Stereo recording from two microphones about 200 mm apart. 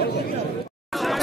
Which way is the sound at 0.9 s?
Centre (ahead or behind).